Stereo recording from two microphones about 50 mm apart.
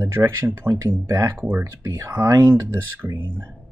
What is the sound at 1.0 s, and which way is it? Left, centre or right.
Speech, right.